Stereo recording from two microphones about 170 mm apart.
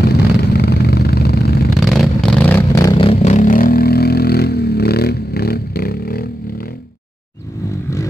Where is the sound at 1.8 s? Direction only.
Centre (ahead or behind); by 5.5 s 70° left (ahead or behind).